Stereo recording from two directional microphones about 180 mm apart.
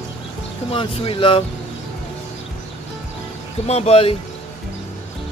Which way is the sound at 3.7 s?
35° left (ahead or behind).